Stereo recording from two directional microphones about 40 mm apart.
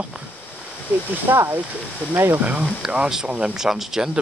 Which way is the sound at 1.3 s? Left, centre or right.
Right.